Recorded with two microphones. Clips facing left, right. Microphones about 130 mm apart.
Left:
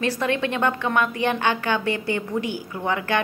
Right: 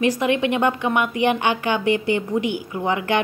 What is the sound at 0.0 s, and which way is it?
A woman's voice, 15° right (ahead or behind).